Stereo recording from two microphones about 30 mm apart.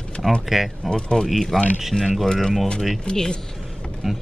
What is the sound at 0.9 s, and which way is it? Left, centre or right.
Speech, left.